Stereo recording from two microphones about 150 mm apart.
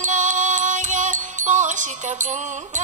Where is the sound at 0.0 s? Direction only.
55° right (ahead or behind).